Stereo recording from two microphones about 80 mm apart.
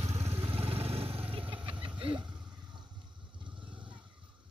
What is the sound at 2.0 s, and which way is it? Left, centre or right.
Vehicle, right.